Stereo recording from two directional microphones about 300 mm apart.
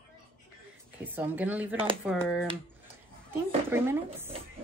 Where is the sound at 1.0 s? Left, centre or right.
Centre.